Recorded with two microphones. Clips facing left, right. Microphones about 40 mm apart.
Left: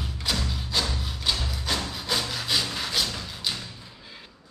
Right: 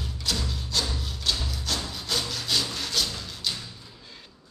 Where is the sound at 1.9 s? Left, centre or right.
Centre.